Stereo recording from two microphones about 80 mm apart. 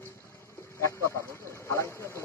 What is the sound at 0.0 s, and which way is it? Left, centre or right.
Vehicle, left.